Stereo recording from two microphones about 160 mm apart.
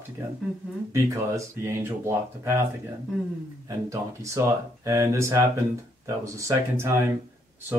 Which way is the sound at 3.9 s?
20° right (ahead or behind).